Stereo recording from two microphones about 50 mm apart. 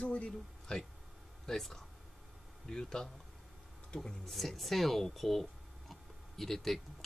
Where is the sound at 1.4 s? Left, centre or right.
Centre.